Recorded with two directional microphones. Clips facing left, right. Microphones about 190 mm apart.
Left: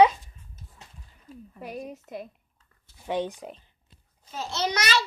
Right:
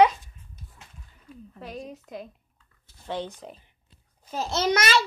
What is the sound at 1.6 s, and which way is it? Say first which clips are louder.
A woman's voice: left 1 dB; 10° left (ahead or behind).